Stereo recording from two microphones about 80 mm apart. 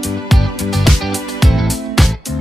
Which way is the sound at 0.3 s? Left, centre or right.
Centre.